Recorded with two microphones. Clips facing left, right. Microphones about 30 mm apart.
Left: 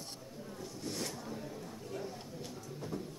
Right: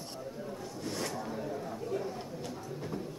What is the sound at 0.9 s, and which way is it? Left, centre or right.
Zipper, centre.